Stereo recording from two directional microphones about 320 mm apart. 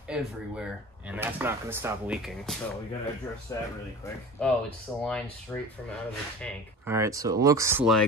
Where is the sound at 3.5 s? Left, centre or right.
Centre.